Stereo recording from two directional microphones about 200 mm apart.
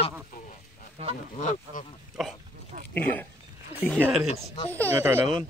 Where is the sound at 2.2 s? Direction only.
Centre (ahead or behind).